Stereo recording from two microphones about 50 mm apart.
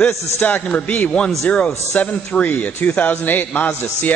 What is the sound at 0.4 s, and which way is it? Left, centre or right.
Speech, left.